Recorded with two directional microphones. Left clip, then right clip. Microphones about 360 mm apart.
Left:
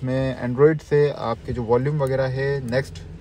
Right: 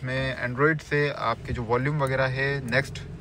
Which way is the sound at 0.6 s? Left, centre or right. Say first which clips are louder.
Left 7 dB; centre.